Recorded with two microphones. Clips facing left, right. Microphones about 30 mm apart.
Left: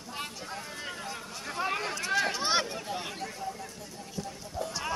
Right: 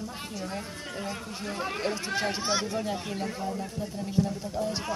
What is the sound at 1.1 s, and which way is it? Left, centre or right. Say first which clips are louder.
Speech: right 3 dB; centre.